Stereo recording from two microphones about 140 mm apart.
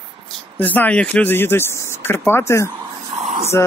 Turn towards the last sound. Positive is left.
turn(degrees=-55)  # may be behind; listen again after turning